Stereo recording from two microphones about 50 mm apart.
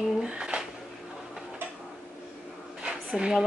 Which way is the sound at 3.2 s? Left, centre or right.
Centre.